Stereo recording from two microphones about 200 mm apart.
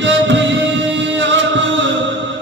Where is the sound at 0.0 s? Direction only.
65° right (ahead or behind).